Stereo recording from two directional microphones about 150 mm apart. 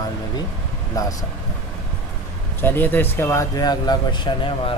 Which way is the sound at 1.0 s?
25° left (ahead or behind).